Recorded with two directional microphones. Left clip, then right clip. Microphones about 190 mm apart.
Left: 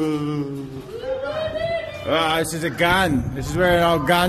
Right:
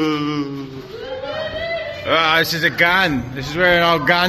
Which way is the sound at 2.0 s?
15° left (ahead or behind).